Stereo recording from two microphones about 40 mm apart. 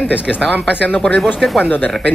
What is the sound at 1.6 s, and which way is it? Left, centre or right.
Speech, left.